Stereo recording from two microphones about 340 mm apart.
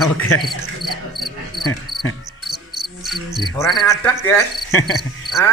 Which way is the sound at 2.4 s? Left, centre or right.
Centre.